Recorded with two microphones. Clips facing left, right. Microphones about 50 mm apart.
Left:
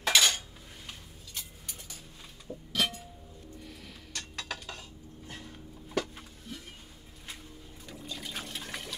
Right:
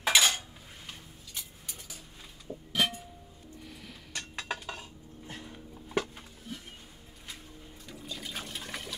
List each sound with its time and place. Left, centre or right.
0.0 s cutlery: centre
0.8 s a sound: centre
2.4 s a sound: centre
3.6 s music: centre
4.1 s dishes: centre
7.8 s liquid: centre